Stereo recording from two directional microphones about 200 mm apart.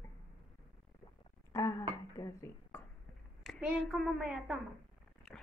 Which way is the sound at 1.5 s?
15° left (ahead or behind).